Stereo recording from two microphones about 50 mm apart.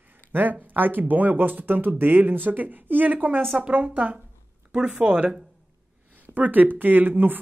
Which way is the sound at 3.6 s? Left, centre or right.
Right.